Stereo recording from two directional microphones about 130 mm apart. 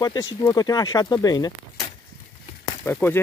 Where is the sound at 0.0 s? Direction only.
30° left (ahead or behind).